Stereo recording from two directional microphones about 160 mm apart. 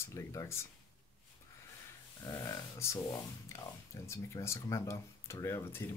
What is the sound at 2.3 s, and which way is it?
Speech, 20° left (ahead or behind).